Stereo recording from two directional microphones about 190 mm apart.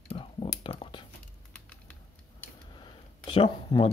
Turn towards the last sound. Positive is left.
turn(degrees=25)  # may be behind; listen again after turning